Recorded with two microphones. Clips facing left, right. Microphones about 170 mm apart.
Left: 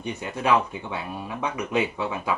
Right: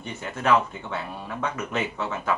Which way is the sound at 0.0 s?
15° left (ahead or behind).